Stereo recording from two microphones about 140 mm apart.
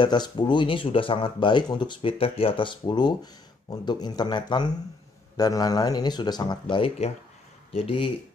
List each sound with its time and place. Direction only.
0.0 s speech: 30° left (ahead or behind)